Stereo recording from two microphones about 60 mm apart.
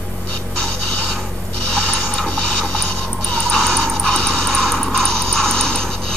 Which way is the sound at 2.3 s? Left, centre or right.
Left.